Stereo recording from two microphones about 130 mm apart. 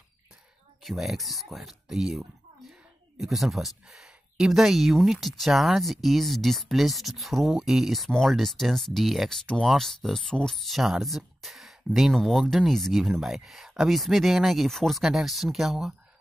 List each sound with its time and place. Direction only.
0.8 s speech: centre (ahead or behind)